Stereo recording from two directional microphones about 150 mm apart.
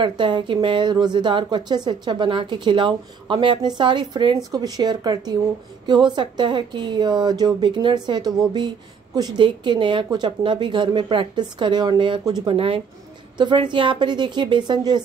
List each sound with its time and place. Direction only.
0.0 s a woman's voice: 30° right (ahead or behind)